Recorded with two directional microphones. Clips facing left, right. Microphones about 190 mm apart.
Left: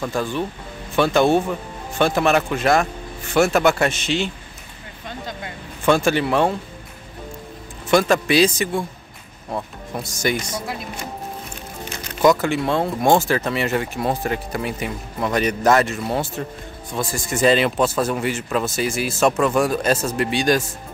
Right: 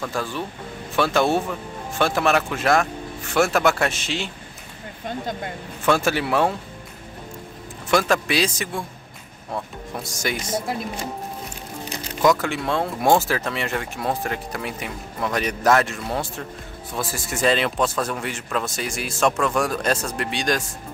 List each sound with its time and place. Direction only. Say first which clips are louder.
0.1 s speech: left 4 dB; centre (ahead or behind)
5.0 s speech: right 3 dB; 45° right (ahead or behind)
5.9 s speech: left 3 dB; 5° right (ahead or behind)
7.9 s speech: left 4 dB; centre (ahead or behind)
10.0 s speech: left 6 dB; centre (ahead or behind)
12.2 s speech: left 3 dB; centre (ahead or behind)